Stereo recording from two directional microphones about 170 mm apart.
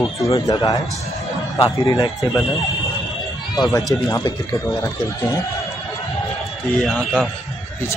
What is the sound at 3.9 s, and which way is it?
A man's voice, 20° left (ahead or behind).